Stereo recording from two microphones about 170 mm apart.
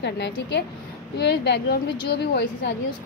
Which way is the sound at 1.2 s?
75° left (ahead or behind).